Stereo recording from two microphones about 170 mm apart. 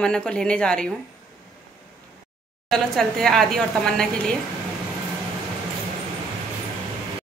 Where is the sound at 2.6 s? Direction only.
Centre (ahead or behind).